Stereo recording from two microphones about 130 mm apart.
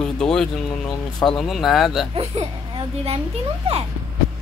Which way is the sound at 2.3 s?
50° right (ahead or behind).